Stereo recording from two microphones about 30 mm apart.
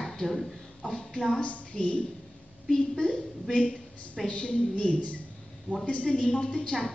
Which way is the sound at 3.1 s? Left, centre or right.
Left.